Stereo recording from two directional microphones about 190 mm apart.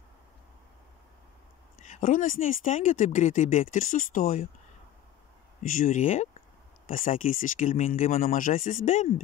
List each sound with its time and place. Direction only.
1.9 s speech: 40° left (ahead or behind)
5.6 s speech: 40° left (ahead or behind)